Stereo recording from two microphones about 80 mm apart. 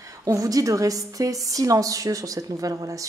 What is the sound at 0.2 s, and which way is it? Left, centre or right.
A woman's voice, right.